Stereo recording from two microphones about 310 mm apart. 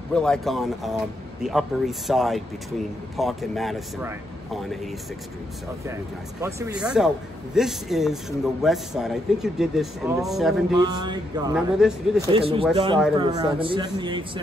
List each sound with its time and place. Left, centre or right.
0.1 s a man's voice: centre
6.4 s a man's voice: centre
10.8 s speech: centre
11.5 s a man's voice: centre
12.3 s speech: centre